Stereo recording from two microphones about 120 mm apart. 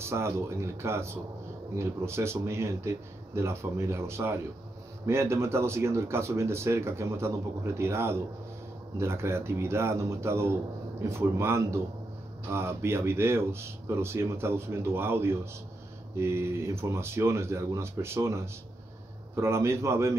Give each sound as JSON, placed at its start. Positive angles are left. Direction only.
{"t": 0.0, "sound": "speech", "side_deg": -20}